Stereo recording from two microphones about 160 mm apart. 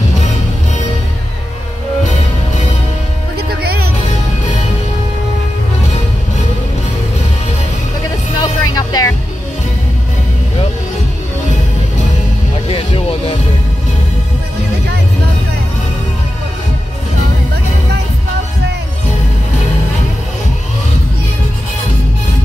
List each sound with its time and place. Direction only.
3.3 s music: 75° right (ahead or behind)
8.4 s vehicle: 25° left (ahead or behind)
12.6 s music: 35° left (ahead or behind)